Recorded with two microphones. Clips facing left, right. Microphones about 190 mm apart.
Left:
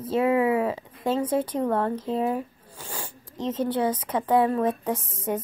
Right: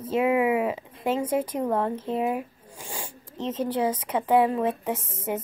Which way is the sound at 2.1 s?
10° right (ahead or behind).